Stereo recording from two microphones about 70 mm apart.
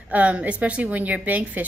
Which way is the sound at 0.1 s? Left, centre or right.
Centre.